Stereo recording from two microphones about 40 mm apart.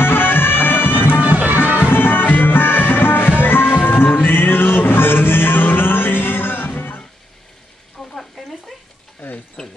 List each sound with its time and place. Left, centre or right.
0.0 s music: left
1.2 s music: right
2.0 s music: left
8.1 s a sound: centre